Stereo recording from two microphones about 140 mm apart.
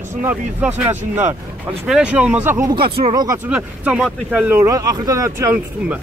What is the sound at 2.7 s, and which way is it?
Speech, 35° right (ahead or behind).